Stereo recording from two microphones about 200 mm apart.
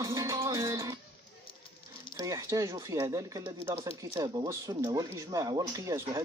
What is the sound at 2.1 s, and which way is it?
Speech, 15° right (ahead or behind).